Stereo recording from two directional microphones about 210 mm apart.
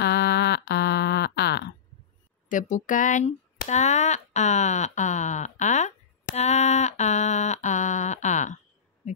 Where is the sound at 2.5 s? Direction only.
35° left (ahead or behind).